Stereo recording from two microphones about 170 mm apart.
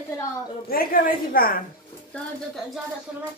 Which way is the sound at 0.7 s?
60° left (ahead or behind).